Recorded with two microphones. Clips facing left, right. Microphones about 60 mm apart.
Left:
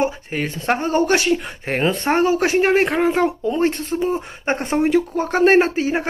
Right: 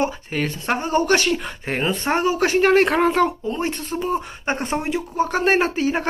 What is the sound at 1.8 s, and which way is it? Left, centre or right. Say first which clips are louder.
Speech: left 4 dB; left.